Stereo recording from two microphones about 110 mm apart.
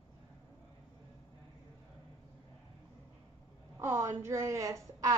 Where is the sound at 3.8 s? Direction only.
20° right (ahead or behind).